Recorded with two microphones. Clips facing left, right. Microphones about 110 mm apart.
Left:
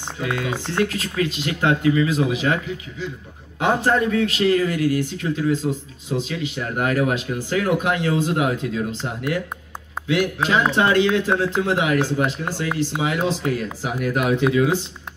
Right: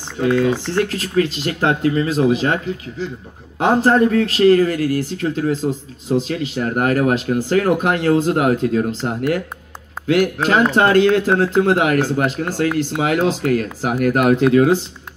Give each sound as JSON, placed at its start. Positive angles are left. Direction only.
{"t": 0.2, "sound": "speech", "side_deg": -40}
{"t": 6.0, "sound": "speech", "side_deg": -35}
{"t": 6.3, "sound": "speech", "side_deg": -45}